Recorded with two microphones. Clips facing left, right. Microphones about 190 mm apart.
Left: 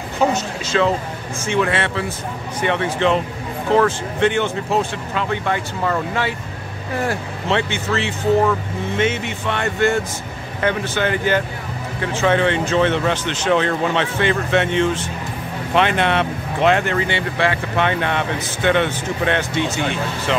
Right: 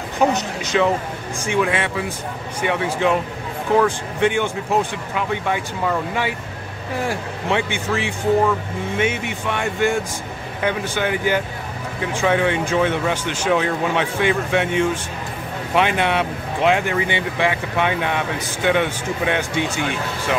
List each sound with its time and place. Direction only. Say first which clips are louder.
0.2 s speech: even; 15° right (ahead or behind)